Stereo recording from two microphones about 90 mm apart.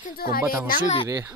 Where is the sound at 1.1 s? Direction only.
45° right (ahead or behind).